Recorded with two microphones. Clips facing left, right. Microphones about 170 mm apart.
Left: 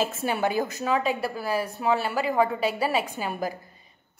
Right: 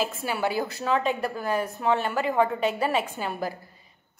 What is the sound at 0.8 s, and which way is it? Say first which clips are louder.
A woman's voice: right 2 dB; 10° left (ahead or behind).